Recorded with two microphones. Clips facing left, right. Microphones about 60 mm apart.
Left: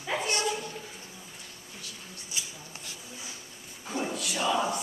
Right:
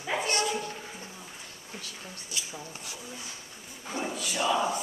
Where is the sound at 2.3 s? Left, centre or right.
Left.